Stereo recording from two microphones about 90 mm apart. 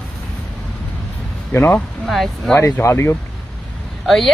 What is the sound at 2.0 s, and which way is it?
Speech, centre (ahead or behind).